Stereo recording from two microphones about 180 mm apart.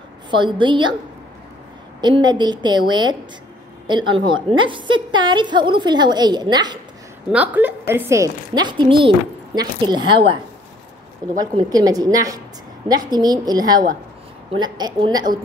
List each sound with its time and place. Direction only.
0.3 s a woman's voice: 25° right (ahead or behind)
2.0 s a woman's voice: 25° right (ahead or behind)
7.2 s a woman's voice: 10° right (ahead or behind); by 10.2 s 25° right (ahead or behind)
11.3 s a woman's voice: 20° right (ahead or behind)